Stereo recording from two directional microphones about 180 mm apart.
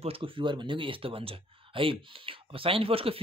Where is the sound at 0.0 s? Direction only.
30° right (ahead or behind).